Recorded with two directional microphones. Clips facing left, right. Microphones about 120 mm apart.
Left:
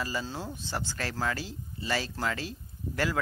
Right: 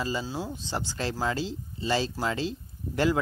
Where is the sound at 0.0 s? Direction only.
20° right (ahead or behind).